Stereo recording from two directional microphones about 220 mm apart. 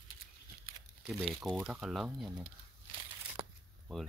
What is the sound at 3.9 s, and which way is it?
Speech, 5° left (ahead or behind).